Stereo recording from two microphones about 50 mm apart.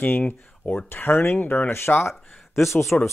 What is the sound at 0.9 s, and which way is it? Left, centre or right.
Speech, left.